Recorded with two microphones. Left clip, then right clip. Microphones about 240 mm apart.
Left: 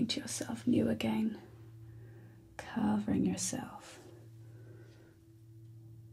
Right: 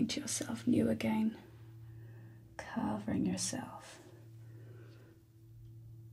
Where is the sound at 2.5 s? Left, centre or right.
Centre.